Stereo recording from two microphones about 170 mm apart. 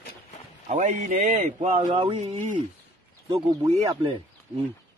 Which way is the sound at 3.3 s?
25° right (ahead or behind).